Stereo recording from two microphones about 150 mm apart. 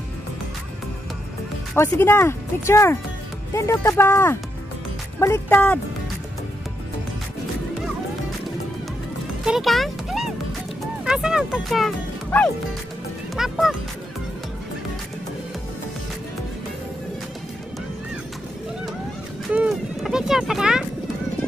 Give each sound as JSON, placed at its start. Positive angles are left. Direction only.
{"t": 1.7, "sound": "speech", "side_deg": 15}
{"t": 9.4, "sound": "music", "side_deg": 0}
{"t": 11.1, "sound": "speech", "side_deg": -5}
{"t": 13.4, "sound": "speech", "side_deg": -5}
{"t": 19.5, "sound": "a sound", "side_deg": -5}